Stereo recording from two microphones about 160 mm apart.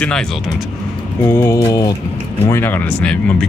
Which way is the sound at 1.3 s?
15° left (ahead or behind).